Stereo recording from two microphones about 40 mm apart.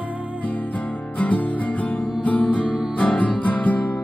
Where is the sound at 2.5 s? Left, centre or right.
Left.